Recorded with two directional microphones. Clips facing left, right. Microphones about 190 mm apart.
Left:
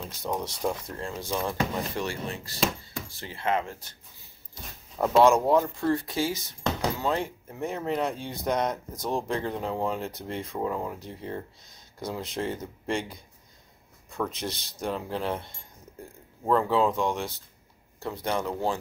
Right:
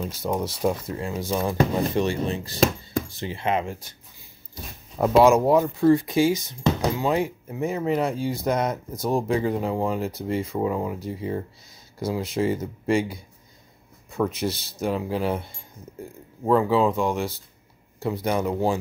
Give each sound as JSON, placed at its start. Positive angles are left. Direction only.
{"t": 0.2, "sound": "speech", "side_deg": -5}
{"t": 4.9, "sound": "speech", "side_deg": -10}